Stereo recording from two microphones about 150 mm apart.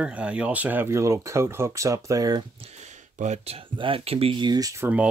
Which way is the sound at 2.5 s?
45° right (ahead or behind).